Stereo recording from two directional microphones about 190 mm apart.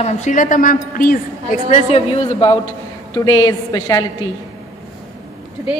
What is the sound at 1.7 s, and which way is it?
A woman's voice, 35° left (ahead or behind).